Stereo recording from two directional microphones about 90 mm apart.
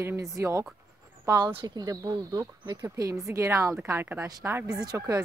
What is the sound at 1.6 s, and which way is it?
Speech, 45° right (ahead or behind).